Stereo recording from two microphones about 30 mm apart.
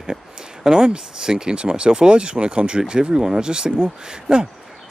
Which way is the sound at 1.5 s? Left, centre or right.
Right.